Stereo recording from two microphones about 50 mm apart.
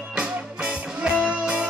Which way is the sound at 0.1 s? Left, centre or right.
Centre.